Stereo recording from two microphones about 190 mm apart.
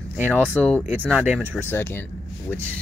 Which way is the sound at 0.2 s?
10° right (ahead or behind).